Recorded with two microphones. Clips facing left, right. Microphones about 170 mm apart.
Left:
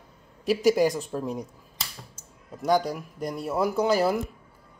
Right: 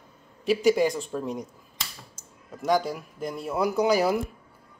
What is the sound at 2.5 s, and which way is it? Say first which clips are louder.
A man's voice: left 1 dB; centre (ahead or behind).